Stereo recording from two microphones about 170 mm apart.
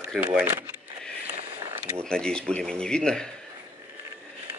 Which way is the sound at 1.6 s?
15° right (ahead or behind).